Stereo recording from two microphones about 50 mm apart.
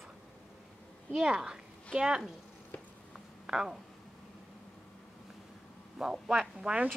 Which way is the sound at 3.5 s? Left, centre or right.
Centre.